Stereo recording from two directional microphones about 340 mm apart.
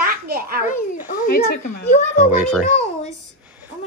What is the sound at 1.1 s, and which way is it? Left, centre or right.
Speech, left.